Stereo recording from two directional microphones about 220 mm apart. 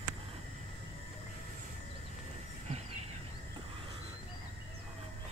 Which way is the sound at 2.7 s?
30° right (ahead or behind).